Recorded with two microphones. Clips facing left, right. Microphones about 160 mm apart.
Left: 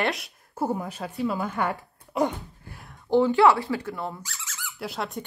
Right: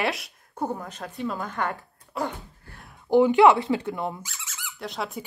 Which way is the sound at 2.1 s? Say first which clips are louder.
Left 5 dB; 15° left (ahead or behind).